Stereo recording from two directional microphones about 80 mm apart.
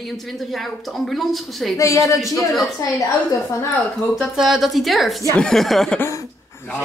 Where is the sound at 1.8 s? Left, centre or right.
Left.